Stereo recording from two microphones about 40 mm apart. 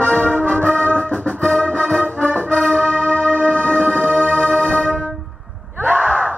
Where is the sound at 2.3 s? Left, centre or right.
Left.